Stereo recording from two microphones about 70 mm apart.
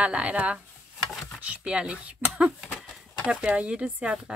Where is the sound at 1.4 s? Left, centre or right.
Centre.